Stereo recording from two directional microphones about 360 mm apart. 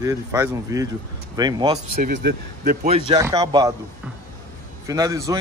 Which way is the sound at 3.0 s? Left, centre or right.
Centre.